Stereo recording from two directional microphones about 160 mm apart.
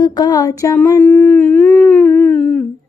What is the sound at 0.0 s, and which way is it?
Humming, 25° left (ahead or behind).